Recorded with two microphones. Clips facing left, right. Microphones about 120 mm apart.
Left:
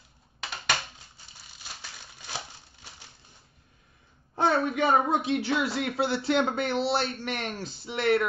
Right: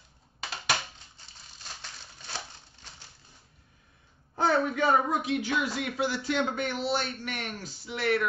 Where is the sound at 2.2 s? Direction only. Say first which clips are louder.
Left 2 dB; 10° left (ahead or behind).